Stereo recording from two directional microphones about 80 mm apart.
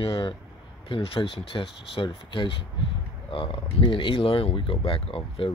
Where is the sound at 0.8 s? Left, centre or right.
Left.